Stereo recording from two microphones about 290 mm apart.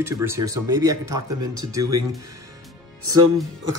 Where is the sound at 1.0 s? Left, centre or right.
Right.